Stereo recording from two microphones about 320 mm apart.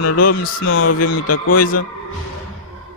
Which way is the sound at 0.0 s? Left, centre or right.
Left.